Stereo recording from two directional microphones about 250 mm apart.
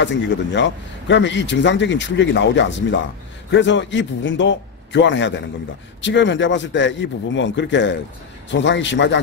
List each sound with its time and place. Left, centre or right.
0.0 s speech: left